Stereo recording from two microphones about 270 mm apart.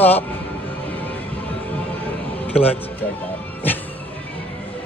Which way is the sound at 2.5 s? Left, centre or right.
Left.